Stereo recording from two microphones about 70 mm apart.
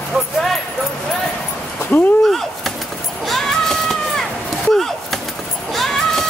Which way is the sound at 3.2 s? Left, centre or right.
Centre.